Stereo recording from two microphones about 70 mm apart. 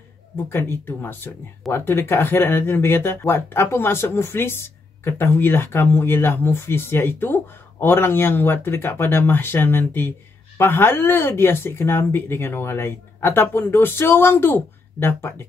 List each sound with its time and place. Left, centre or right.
0.5 s speech: left